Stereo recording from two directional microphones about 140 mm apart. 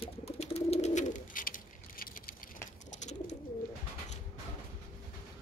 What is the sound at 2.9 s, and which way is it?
Bird, 60° left (ahead or behind).